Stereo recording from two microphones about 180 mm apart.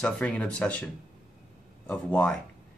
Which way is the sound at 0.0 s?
5° left (ahead or behind).